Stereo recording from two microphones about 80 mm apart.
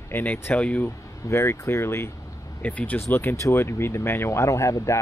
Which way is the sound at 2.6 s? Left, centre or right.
Left.